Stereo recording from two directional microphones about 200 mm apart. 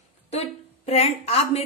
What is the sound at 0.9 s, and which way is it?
Speech, 30° left (ahead or behind).